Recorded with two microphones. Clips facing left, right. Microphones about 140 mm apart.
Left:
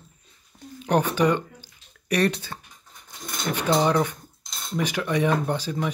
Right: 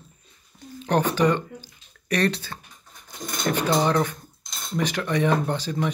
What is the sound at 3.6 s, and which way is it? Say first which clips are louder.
Speech: left 2 dB; 10° left (ahead or behind).